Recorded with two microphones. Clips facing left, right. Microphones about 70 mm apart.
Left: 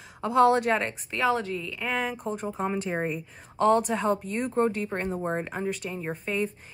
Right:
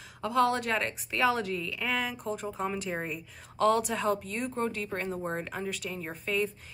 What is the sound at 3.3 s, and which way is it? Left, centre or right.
A woman's voice, centre.